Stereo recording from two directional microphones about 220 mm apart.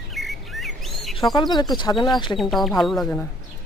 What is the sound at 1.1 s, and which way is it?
Speech, 20° left (ahead or behind).